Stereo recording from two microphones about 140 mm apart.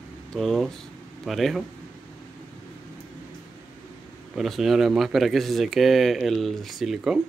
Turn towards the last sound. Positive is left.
turn(degrees=-5)  # may be behind; listen again after turning